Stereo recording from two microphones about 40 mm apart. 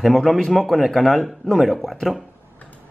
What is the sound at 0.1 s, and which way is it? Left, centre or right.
Speech, centre.